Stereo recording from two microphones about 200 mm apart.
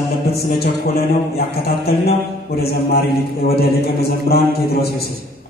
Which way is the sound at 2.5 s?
50° left (ahead or behind).